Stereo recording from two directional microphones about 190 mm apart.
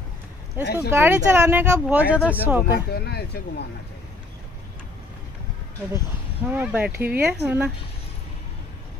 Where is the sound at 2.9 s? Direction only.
55° left (ahead or behind).